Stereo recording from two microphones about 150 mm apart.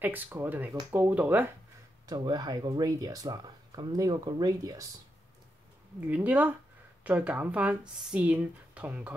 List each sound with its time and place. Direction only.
0.0 s speech: 15° right (ahead or behind)
2.0 s speech: 25° right (ahead or behind)
5.9 s speech: 10° right (ahead or behind)